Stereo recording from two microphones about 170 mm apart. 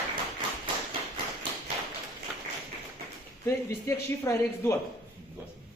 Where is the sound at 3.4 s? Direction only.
15° left (ahead or behind).